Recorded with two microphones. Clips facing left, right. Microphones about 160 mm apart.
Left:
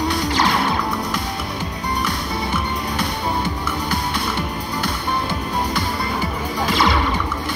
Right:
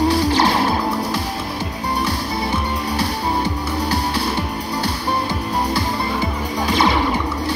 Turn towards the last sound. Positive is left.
turn(degrees=-25)  # may be behind; listen again after turning